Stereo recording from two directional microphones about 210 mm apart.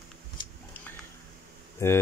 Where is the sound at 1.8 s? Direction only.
15° left (ahead or behind).